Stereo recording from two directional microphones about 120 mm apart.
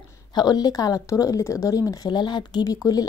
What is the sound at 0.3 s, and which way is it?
Speech, 35° left (ahead or behind).